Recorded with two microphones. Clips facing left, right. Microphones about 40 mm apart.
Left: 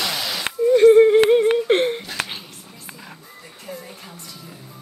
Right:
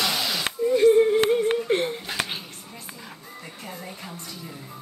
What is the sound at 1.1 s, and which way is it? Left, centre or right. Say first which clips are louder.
Yodeling: left 6 dB; left.